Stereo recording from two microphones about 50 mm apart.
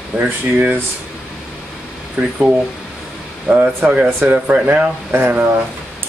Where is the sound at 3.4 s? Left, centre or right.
Right.